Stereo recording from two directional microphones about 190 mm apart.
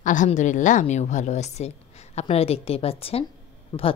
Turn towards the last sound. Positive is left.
turn(degrees=20)  # may be behind; listen again after turning